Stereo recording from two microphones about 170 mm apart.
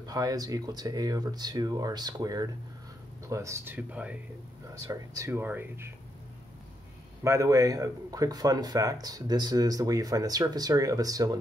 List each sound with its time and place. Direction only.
0.0 s speech: 20° right (ahead or behind)
4.8 s speech: 20° right (ahead or behind)
7.2 s speech: 20° right (ahead or behind)